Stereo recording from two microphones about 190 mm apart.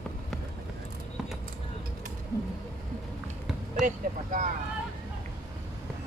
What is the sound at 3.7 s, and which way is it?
Speech, 40° right (ahead or behind).